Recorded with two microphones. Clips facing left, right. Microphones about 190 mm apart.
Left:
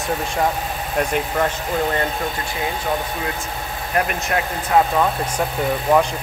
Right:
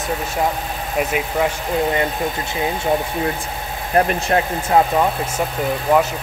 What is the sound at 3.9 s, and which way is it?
Speech, 30° right (ahead or behind).